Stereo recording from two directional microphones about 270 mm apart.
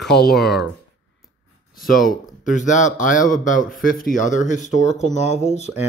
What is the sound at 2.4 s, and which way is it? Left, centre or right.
Speech, left.